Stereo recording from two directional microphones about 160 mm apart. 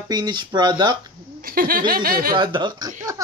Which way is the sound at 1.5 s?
65° right (ahead or behind).